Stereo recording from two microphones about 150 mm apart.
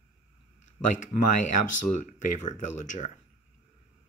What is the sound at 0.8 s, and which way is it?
Speech, 55° left (ahead or behind).